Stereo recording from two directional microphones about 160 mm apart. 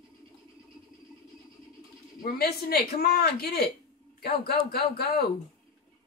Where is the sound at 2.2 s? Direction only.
70° left (ahead or behind).